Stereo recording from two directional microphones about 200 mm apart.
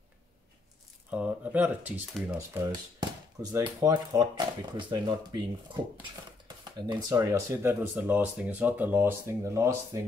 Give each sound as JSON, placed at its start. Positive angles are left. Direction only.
{"t": 1.1, "sound": "speech", "side_deg": -10}
{"t": 6.4, "sound": "speech", "side_deg": -20}